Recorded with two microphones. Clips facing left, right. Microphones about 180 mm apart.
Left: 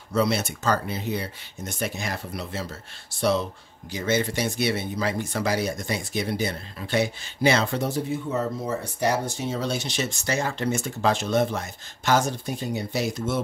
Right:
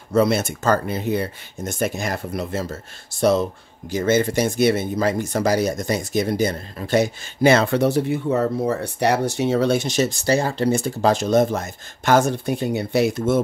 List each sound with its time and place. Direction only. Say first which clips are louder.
0.1 s speech: right 6 dB; 50° right (ahead or behind)